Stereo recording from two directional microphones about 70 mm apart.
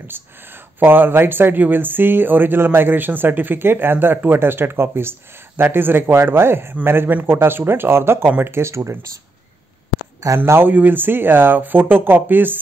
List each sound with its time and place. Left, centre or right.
0.7 s speech: right
10.2 s speech: right